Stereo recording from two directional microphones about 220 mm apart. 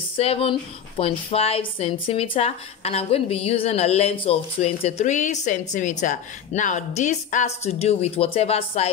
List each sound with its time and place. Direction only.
0.2 s speech: 25° left (ahead or behind)